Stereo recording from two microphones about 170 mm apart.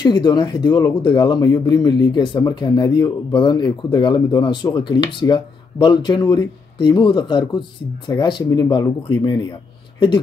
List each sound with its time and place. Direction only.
0.0 s speech: 25° left (ahead or behind)